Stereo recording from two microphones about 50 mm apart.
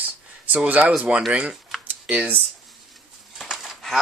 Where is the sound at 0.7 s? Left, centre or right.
Right.